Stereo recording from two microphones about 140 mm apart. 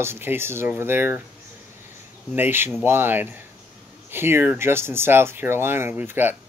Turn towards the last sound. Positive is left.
turn(degrees=-15)  # may be behind; listen again after turning